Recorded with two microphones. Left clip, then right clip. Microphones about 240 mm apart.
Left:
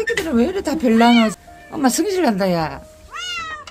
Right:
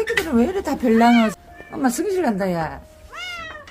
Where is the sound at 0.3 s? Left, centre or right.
Centre.